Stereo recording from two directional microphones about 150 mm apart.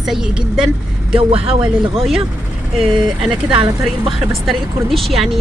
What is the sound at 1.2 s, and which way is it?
Speech, 40° right (ahead or behind).